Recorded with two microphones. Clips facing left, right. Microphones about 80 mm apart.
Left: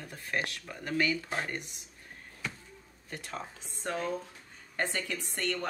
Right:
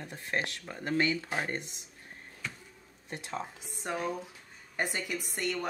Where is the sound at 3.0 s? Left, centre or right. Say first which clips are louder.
Right 2 dB; right.